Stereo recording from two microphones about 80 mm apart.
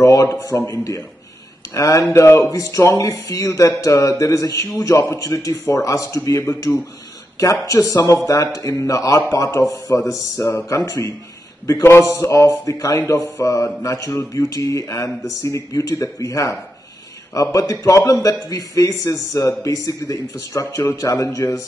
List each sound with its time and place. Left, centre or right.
0.0 s a man's voice: left